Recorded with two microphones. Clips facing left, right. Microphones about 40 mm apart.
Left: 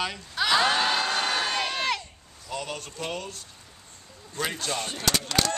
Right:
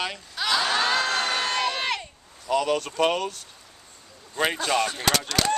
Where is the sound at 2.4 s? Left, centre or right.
Right.